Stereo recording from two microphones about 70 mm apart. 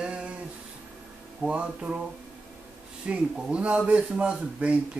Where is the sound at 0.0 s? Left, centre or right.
Centre.